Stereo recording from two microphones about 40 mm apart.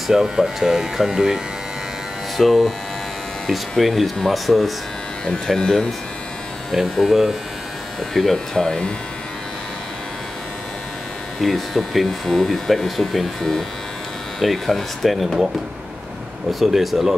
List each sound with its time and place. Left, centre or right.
0.1 s speech: centre
2.3 s speech: centre
6.7 s speech: centre
8.6 s speech: centre
11.4 s speech: centre
16.5 s speech: centre